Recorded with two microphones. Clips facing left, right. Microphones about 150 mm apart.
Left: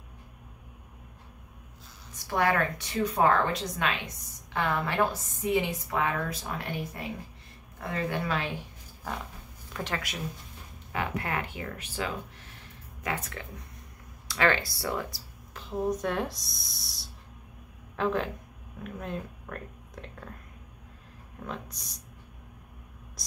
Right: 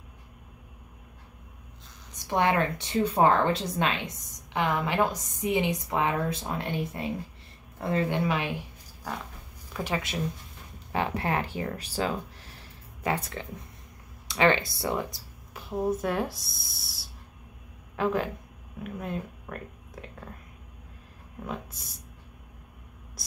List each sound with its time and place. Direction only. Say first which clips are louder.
2.1 s a woman's voice: right 2 dB; 20° right (ahead or behind)
4.6 s a woman's voice: right 2 dB; 15° right (ahead or behind)
9.7 s a sound: right 3 dB; 5° right (ahead or behind)
10.9 s speech: right 4 dB; 30° right (ahead or behind)
14.2 s speech: right 3 dB; 20° right (ahead or behind); by 20.2 s 5° right (ahead or behind)
21.5 s speech: right 2 dB; 5° right (ahead or behind)